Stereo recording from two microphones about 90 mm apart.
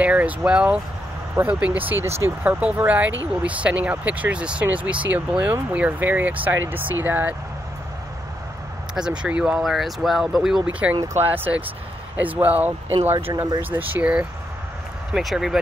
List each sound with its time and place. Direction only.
0.0 s speech: 15° right (ahead or behind)
2.6 s speech: 15° right (ahead or behind)
8.9 s speech: 10° right (ahead or behind)
10.6 s speech: 15° right (ahead or behind)
15.1 s speech: 5° right (ahead or behind)